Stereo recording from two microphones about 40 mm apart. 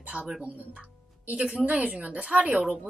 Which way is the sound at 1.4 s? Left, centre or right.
Right.